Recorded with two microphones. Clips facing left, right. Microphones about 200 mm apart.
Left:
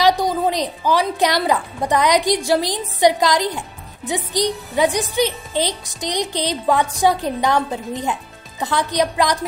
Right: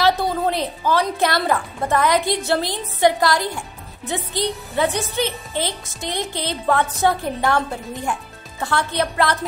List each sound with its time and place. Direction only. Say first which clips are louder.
0.0 s a woman's voice: left 2 dB; 15° left (ahead or behind)